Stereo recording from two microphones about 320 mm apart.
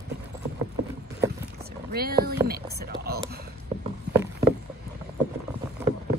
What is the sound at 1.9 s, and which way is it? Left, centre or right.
Speech, right.